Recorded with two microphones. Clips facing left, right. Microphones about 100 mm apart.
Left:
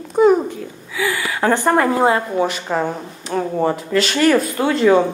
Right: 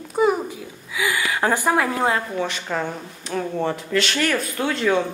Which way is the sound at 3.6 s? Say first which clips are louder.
Left 5 dB; 5° left (ahead or behind).